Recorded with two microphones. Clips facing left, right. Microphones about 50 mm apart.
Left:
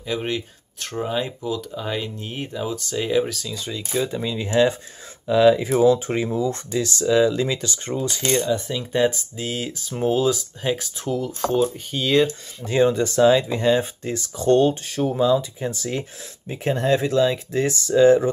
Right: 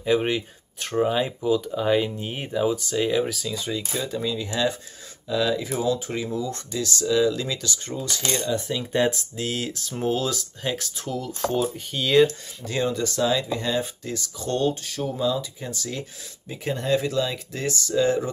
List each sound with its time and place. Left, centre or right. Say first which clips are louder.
0.0 s speech: right 4 dB; centre
3.9 s speech: left 6 dB; centre
4.4 s speech: left 6 dB; left
8.4 s speech: left 3 dB; centre
12.3 s speech: left 5 dB; left